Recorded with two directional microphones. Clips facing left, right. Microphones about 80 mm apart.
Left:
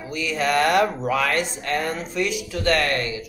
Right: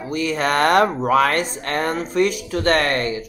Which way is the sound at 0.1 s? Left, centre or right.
Right.